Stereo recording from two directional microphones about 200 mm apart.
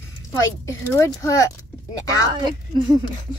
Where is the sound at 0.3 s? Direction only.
15° left (ahead or behind).